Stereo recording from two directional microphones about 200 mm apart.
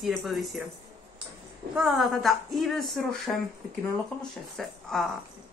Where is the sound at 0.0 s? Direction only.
Centre (ahead or behind).